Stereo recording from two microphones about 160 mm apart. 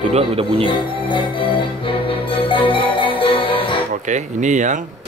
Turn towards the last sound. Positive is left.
turn(degrees=-50)  # may be behind; listen again after turning